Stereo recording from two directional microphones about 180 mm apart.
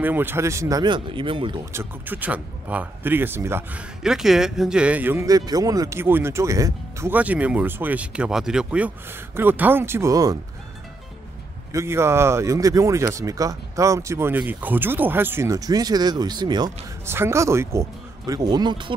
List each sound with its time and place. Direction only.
0.0 s speech: 10° right (ahead or behind); by 1.6 s 30° right (ahead or behind)
1.7 s speech: 10° right (ahead or behind)
4.0 s speech: 5° right (ahead or behind); by 10.3 s 20° right (ahead or behind)
11.7 s speech: 15° right (ahead or behind)